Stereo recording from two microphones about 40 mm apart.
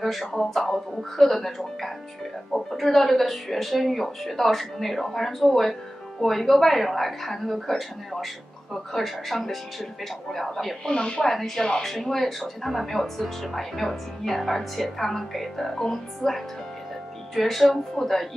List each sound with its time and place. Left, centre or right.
0.0 s speech: centre
11.0 s speech: left
11.2 s speech: centre